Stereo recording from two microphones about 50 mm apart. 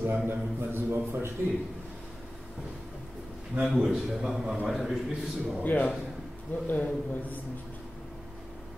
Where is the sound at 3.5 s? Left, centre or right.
Right.